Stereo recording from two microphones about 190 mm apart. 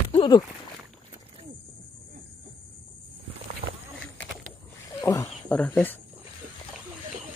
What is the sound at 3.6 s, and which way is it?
Horse, 30° right (ahead or behind).